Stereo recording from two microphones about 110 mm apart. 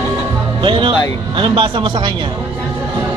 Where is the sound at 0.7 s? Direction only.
50° right (ahead or behind).